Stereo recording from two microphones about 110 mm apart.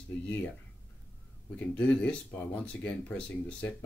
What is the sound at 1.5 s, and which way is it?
Speech, 15° left (ahead or behind).